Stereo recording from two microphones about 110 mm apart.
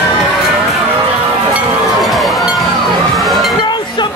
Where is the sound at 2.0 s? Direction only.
Centre (ahead or behind).